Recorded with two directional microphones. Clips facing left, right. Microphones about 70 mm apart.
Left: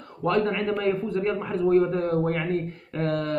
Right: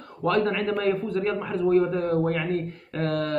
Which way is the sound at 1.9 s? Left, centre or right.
Left.